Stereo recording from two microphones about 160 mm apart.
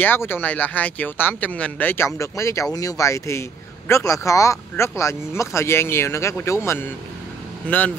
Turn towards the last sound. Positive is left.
turn(degrees=10)  # may be behind; listen again after turning